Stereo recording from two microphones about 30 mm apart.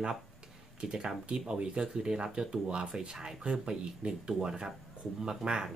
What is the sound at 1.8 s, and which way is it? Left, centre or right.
Speech, right.